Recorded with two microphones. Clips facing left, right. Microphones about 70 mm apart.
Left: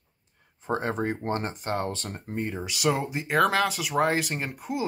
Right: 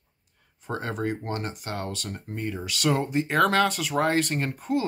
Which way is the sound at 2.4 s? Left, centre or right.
Centre.